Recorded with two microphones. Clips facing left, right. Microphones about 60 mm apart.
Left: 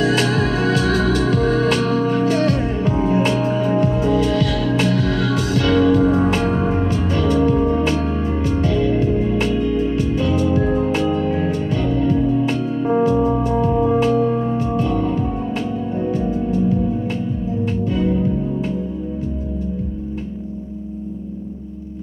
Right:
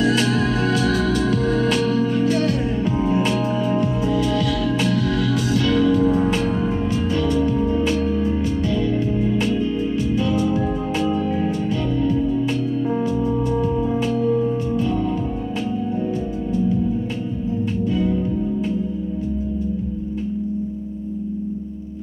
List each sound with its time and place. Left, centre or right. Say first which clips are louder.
0.0 s music: left 1 dB; left
17.6 s music: left 1 dB; left